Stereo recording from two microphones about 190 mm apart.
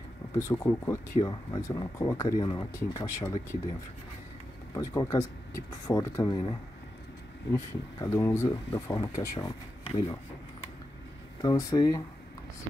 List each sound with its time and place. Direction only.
0.4 s speech: 15° left (ahead or behind)
4.7 s speech: 20° left (ahead or behind)
7.5 s speech: 15° left (ahead or behind)
9.8 s speech: 30° left (ahead or behind)
11.4 s speech: 20° left (ahead or behind)